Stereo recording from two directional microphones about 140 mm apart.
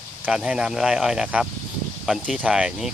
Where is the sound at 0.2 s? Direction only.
5° right (ahead or behind).